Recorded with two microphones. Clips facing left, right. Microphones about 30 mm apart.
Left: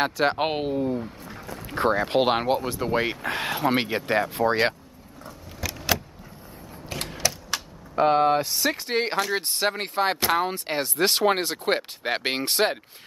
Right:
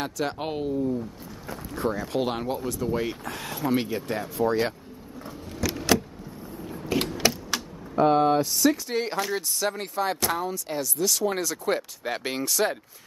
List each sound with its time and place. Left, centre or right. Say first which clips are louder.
0.0 s speech: left 6 dB; left
5.8 s vehicle: right 3 dB; centre
7.2 s a sound: right 2 dB; right
7.9 s speech: left 1 dB; left